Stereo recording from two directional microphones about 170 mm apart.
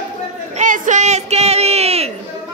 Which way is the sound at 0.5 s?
50° right (ahead or behind).